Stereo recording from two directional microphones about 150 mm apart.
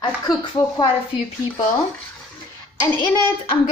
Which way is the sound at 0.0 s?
30° left (ahead or behind).